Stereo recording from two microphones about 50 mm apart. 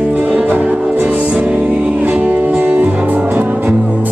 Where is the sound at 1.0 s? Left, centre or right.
Right.